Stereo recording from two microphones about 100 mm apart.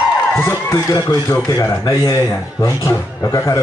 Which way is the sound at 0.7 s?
35° left (ahead or behind).